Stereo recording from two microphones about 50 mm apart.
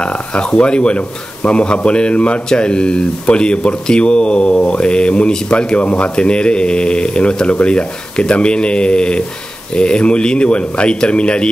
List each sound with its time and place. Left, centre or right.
0.0 s speech: centre